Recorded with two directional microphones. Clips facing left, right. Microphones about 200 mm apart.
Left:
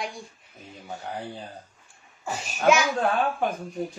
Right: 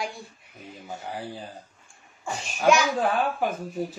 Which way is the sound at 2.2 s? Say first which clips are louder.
Even; 5° left (ahead or behind).